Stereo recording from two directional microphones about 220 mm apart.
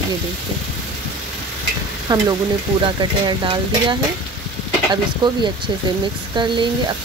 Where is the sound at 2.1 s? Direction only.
20° right (ahead or behind).